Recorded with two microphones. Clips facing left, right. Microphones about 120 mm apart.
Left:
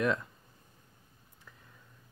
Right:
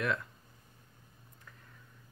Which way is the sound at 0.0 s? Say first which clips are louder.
Left 4 dB; 25° left (ahead or behind).